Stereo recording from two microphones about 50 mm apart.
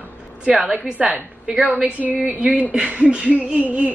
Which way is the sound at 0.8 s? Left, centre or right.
Right.